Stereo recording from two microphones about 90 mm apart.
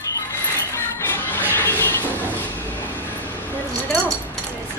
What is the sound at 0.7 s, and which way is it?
Music, 30° left (ahead or behind).